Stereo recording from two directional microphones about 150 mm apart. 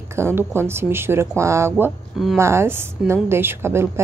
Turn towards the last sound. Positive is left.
turn(degrees=-15)  # may be behind; listen again after turning